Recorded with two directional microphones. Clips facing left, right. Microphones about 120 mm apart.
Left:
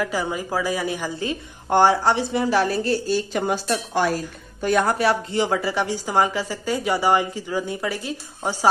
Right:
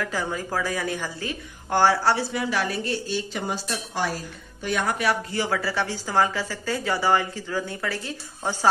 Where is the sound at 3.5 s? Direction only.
55° left (ahead or behind).